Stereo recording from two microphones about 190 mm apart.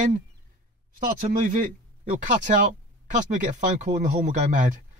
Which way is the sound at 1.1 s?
40° right (ahead or behind).